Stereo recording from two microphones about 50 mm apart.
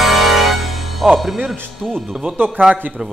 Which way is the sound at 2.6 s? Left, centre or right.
Right.